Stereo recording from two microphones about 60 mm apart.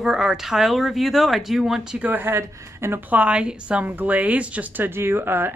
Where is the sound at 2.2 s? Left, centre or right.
Right.